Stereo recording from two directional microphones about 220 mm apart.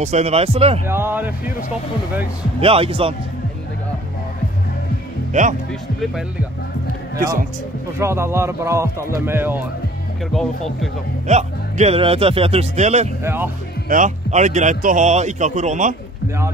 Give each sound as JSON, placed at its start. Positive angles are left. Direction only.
{"t": 0.0, "sound": "speech", "side_deg": -30}
{"t": 0.8, "sound": "speech", "side_deg": -10}
{"t": 2.6, "sound": "speech", "side_deg": -25}
{"t": 5.3, "sound": "speech", "side_deg": -35}
{"t": 5.7, "sound": "speech", "side_deg": 0}
{"t": 8.0, "sound": "speech", "side_deg": -10}
{"t": 11.2, "sound": "speech", "side_deg": -30}
{"t": 13.2, "sound": "speech", "side_deg": -10}
{"t": 13.8, "sound": "a man's voice", "side_deg": -35}